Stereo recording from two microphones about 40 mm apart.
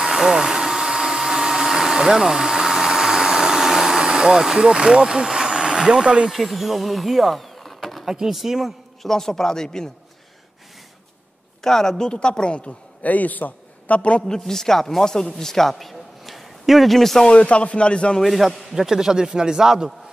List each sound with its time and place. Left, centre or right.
0.0 s hair dryer: centre
6.3 s speech: centre
9.0 s a man's voice: centre
11.6 s a man's voice: centre; by 14.2 s left
14.2 s a man's voice: centre
15.7 s a sound: centre
17.2 s speech: left
18.2 s a man's voice: centre